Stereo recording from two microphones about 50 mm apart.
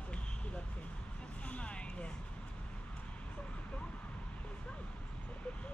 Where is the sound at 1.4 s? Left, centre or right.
Left.